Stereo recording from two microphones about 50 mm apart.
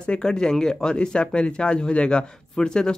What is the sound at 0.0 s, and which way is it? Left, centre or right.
Speech, centre.